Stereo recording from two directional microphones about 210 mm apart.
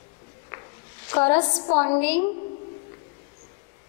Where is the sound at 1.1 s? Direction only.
25° left (ahead or behind).